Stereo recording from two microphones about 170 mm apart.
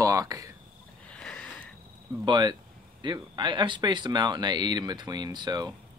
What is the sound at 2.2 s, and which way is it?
Speech, 25° right (ahead or behind).